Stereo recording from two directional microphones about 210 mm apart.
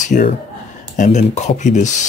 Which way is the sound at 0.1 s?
40° left (ahead or behind).